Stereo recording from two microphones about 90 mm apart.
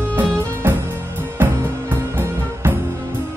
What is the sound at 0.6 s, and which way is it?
Music, 25° right (ahead or behind).